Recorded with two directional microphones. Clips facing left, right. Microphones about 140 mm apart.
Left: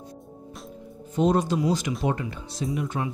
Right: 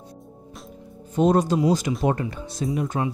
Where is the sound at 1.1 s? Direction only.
45° right (ahead or behind).